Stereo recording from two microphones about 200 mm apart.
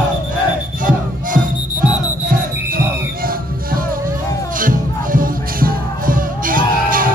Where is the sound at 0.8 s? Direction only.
45° right (ahead or behind).